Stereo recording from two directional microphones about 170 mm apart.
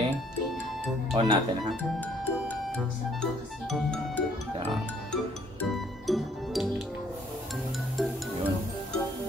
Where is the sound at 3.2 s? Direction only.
5° left (ahead or behind).